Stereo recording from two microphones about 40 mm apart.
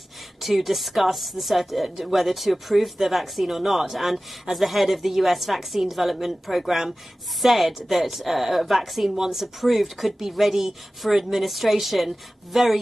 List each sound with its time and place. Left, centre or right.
0.4 s speech: centre